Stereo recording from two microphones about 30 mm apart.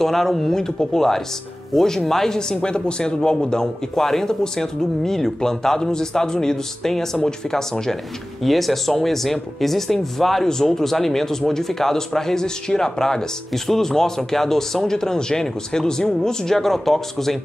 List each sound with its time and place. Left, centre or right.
0.0 s speech: centre
2.5 s a man's voice: left; by 7.1 s centre
8.4 s speech: centre